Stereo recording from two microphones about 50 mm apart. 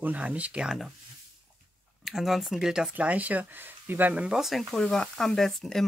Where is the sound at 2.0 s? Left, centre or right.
Centre.